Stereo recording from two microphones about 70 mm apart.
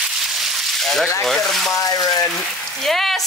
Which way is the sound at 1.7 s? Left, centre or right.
Left.